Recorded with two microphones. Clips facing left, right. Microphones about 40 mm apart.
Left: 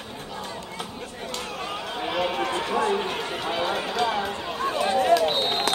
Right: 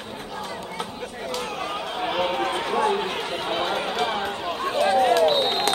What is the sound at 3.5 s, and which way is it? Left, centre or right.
Run, right.